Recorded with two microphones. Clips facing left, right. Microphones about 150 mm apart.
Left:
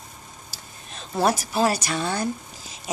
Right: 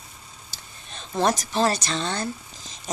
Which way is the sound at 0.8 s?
5° left (ahead or behind).